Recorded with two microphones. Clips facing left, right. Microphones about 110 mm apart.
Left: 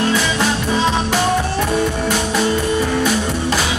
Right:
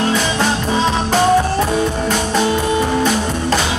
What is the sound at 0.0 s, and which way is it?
Music, 30° right (ahead or behind).